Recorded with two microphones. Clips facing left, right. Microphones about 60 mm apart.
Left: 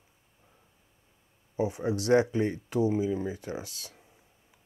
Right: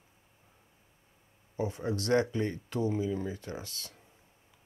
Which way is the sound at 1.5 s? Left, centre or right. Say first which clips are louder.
Left 4 dB; centre.